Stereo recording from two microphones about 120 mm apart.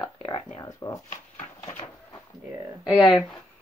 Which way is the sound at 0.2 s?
60° left (ahead or behind).